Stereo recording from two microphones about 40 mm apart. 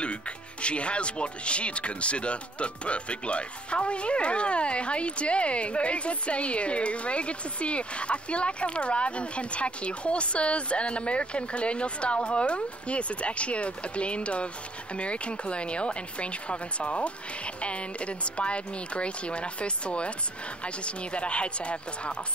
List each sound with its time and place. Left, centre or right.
0.0 s speech: left